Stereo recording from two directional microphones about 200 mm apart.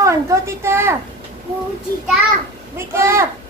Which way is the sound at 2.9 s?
15° right (ahead or behind).